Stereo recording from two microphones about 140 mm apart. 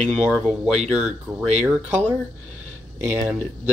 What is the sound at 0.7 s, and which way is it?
Speech, 50° right (ahead or behind).